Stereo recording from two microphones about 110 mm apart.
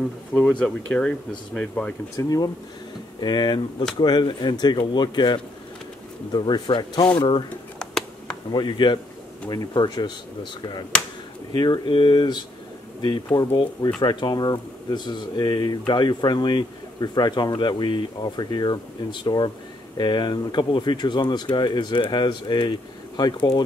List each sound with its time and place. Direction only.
0.3 s speech: 10° left (ahead or behind)
2.1 s speech: 35° left (ahead or behind)
7.8 s a sound: 5° left (ahead or behind)
8.5 s speech: 45° left (ahead or behind)